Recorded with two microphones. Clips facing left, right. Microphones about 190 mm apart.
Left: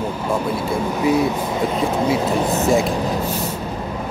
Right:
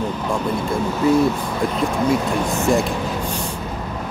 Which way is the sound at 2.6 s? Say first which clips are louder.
Even; centre (ahead or behind).